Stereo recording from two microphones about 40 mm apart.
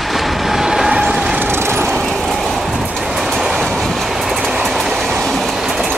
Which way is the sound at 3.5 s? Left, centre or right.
Centre.